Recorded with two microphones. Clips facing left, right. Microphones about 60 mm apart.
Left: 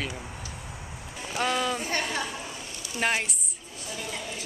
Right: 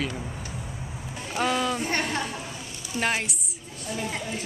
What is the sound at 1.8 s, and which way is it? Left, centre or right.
Speech, right.